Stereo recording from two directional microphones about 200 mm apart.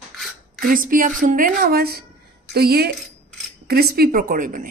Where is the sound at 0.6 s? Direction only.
45° right (ahead or behind).